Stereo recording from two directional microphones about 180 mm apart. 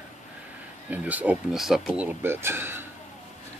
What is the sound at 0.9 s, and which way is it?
Speech, 10° right (ahead or behind).